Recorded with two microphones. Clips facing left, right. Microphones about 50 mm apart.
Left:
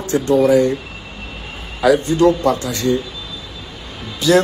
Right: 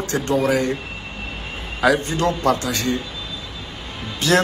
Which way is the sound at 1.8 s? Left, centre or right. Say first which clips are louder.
Left 5 dB; right.